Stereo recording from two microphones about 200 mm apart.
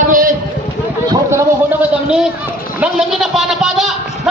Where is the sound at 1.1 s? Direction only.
15° right (ahead or behind).